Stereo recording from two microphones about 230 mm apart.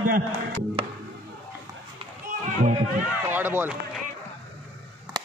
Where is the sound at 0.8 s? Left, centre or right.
Right.